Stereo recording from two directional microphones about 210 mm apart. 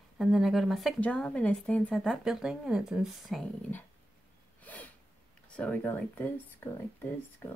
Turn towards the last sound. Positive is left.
turn(degrees=10)  # may be behind; listen again after turning